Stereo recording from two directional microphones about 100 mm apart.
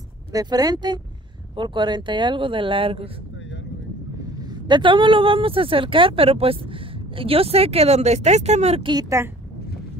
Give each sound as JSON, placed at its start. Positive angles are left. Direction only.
{"t": 0.3, "sound": "speech", "side_deg": -40}
{"t": 4.6, "sound": "speech", "side_deg": -50}
{"t": 9.2, "sound": "speech", "side_deg": -25}